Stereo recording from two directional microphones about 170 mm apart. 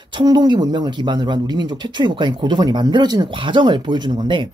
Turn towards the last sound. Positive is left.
turn(degrees=-30)  # may be behind; listen again after turning